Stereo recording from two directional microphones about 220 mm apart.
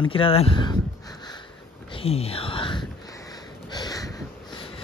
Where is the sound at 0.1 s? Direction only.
25° left (ahead or behind).